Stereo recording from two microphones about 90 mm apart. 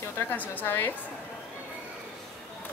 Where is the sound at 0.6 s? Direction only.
25° left (ahead or behind).